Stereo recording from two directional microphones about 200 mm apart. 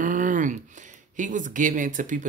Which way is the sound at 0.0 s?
40° right (ahead or behind).